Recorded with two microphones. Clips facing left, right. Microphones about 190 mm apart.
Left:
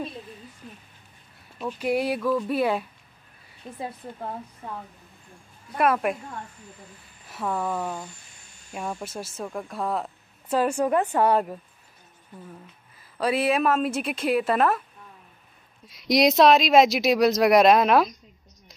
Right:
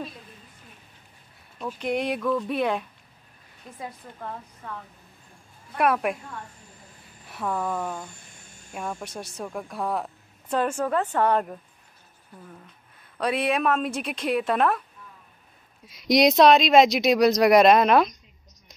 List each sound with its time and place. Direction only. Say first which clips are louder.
1.6 s a woman's voice: left 2 dB; 5° left (ahead or behind)
3.8 s a woman's voice: left 3 dB; 30° left (ahead or behind)
5.8 s a woman's voice: left 1 dB; centre (ahead or behind)
7.2 s a woman's voice: even; centre (ahead or behind)
8.1 s a sound: right 2 dB; 50° right (ahead or behind)
9.0 s a woman's voice: left 1 dB; 5° left (ahead or behind)
12.9 s a woman's voice: left 2 dB; 5° left (ahead or behind)
15.9 s a woman's voice: right 1 dB; centre (ahead or behind)